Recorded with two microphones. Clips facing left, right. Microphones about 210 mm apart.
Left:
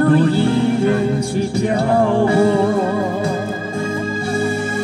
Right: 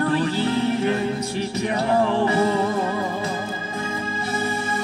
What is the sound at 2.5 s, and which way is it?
Music, 30° left (ahead or behind).